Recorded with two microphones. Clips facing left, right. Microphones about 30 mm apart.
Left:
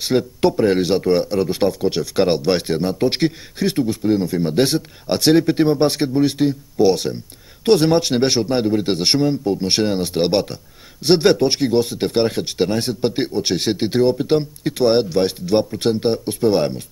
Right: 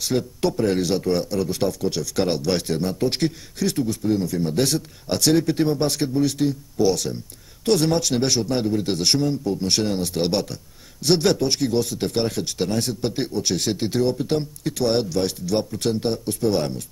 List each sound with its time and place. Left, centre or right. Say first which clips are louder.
0.0 s a man's voice: left 5 dB; left